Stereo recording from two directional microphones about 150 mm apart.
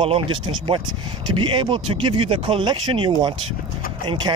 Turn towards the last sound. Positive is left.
turn(degrees=-35)  # may be behind; listen again after turning